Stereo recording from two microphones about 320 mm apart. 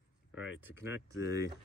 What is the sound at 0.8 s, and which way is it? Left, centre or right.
Speech, centre.